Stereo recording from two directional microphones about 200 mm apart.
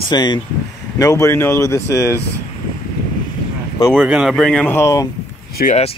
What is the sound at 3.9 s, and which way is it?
Speech, 5° right (ahead or behind).